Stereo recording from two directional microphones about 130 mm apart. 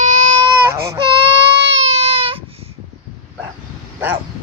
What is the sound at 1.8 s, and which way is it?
Baby cry, 55° right (ahead or behind).